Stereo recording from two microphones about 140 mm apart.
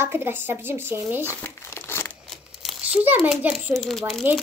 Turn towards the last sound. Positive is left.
turn(degrees=0)  # may be behind; listen again after turning